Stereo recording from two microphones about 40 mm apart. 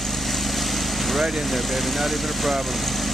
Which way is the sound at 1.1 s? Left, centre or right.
Centre.